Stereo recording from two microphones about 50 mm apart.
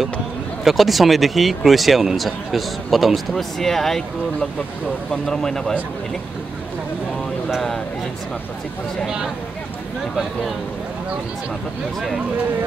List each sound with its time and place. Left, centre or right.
0.7 s speech: centre
9.0 s speech: centre